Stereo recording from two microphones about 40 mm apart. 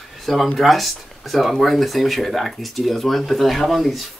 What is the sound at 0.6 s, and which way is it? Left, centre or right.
Speech, centre.